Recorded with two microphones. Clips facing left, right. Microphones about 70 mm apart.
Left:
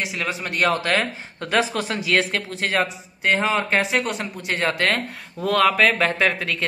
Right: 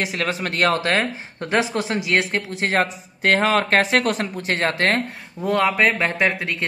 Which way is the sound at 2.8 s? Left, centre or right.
Right.